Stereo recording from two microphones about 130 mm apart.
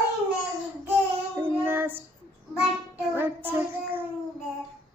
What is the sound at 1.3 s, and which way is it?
Child singing, 15° right (ahead or behind).